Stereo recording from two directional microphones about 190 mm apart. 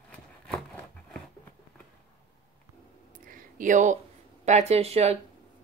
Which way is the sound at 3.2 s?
45° right (ahead or behind).